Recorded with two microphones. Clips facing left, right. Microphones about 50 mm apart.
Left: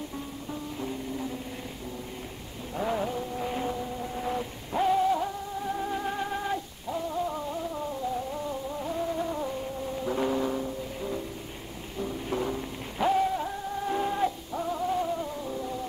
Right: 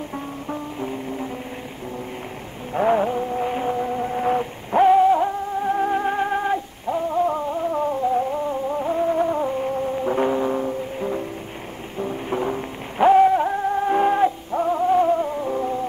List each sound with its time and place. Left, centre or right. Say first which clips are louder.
0.7 s music: right 6 dB; right
2.7 s a sound: right 10 dB; right
10.6 s music: right 8 dB; right